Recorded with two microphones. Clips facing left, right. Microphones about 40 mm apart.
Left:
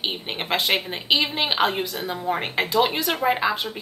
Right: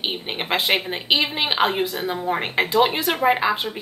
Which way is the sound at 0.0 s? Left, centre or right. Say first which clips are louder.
Right 1 dB; centre.